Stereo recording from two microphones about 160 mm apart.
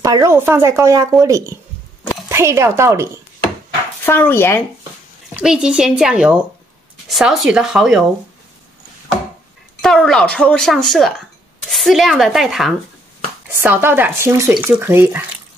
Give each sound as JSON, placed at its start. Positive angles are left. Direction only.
{"t": 0.0, "sound": "speech", "side_deg": -20}
{"t": 4.0, "sound": "speech", "side_deg": 15}
{"t": 5.3, "sound": "a woman's voice", "side_deg": -5}
{"t": 9.8, "sound": "a woman's voice", "side_deg": 0}
{"t": 13.5, "sound": "speech", "side_deg": -15}